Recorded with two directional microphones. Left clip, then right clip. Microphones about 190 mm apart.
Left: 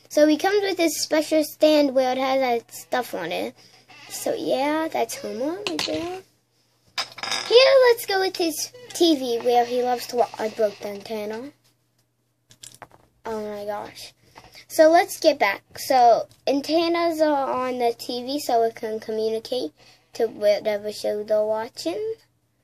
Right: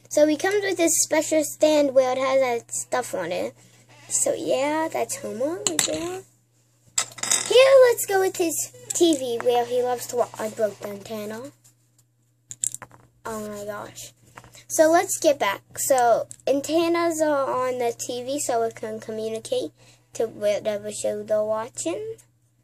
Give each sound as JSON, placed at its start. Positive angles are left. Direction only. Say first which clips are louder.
{"t": 0.1, "sound": "a child's voice", "louder": "left 1 dB", "side_deg": 10}
{"t": 7.0, "sound": "dishes", "louder": "right 1 dB", "side_deg": -30}
{"t": 7.5, "sound": "a child's voice", "louder": "even", "side_deg": 0}
{"t": 12.4, "sound": "a sound", "louder": "right 10 dB", "side_deg": -25}
{"t": 13.2, "sound": "a woman's voice", "louder": "left 3 dB", "side_deg": 10}